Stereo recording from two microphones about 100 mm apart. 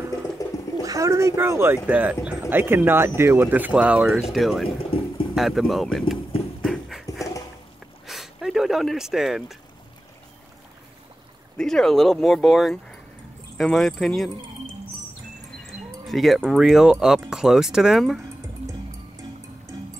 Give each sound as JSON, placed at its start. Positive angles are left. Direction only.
{"t": 0.4, "sound": "cat", "side_deg": 35}
{"t": 0.8, "sound": "speech", "side_deg": -30}
{"t": 4.7, "sound": "speech", "side_deg": 65}
{"t": 5.3, "sound": "speech", "side_deg": 0}
{"t": 6.6, "sound": "dog", "side_deg": 0}
{"t": 8.1, "sound": "a sound", "side_deg": 0}
{"t": 11.5, "sound": "speech", "side_deg": 5}
{"t": 15.6, "sound": "speech", "side_deg": 0}